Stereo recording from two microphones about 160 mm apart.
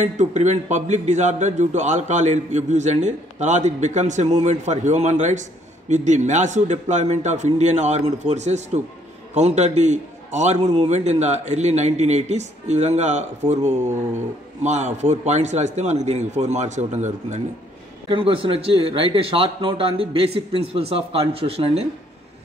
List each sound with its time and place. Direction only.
0.0 s a man's voice: 50° right (ahead or behind)
18.0 s a man's voice: 35° right (ahead or behind)